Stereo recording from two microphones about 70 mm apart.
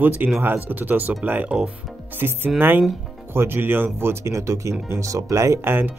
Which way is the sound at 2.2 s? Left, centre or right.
Right.